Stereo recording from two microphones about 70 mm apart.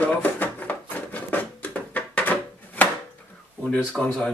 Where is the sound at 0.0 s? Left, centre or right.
Left.